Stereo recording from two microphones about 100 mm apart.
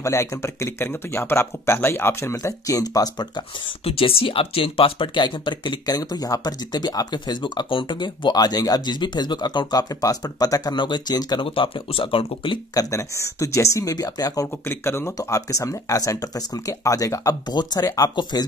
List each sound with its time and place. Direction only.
0.0 s speech: 30° left (ahead or behind)
2.3 s speech: 35° left (ahead or behind)
3.8 s speech: 70° left (ahead or behind); by 11.4 s 45° left (ahead or behind)
11.4 s speech: 65° left (ahead or behind)
12.7 s speech: 30° left (ahead or behind)
14.7 s speech: 25° left (ahead or behind); by 18.5 s 45° left (ahead or behind)